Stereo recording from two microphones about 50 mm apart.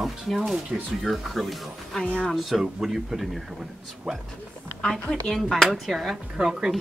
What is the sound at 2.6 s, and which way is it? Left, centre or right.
Speech, centre.